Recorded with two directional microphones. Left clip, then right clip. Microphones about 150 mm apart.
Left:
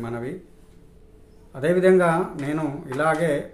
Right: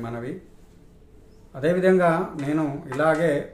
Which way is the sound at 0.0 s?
20° left (ahead or behind).